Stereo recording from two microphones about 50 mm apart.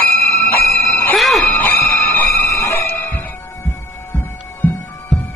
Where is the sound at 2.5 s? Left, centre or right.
Left.